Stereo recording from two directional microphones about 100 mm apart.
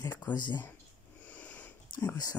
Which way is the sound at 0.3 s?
50° left (ahead or behind).